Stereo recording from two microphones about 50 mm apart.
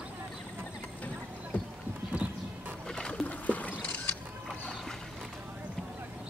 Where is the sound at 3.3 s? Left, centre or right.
Left.